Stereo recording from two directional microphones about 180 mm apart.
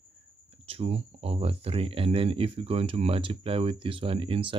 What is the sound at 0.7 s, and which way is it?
Speech, 35° right (ahead or behind).